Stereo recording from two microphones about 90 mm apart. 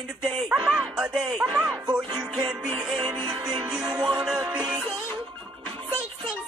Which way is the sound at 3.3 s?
45° right (ahead or behind).